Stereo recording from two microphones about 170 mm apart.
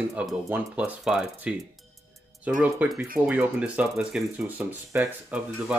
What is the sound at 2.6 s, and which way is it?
Speech, 10° right (ahead or behind).